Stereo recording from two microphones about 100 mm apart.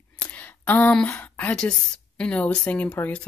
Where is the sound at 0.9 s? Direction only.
15° left (ahead or behind).